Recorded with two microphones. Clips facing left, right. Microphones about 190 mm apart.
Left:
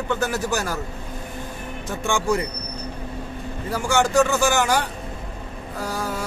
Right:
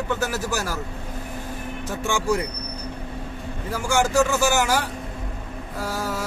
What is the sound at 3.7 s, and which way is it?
A man's voice, 10° right (ahead or behind).